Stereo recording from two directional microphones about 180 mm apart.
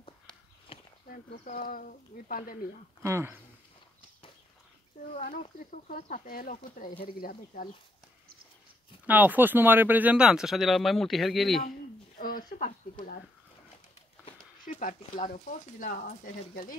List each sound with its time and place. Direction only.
0.7 s a sound: 30° left (ahead or behind)
1.1 s speech: 50° left (ahead or behind)
3.0 s speech: 15° right (ahead or behind)
5.4 s speech: 50° left (ahead or behind)
9.0 s speech: 10° right (ahead or behind)
12.2 s speech: 50° left (ahead or behind)
15.1 s speech: 30° left (ahead or behind)
15.8 s speech: 45° left (ahead or behind)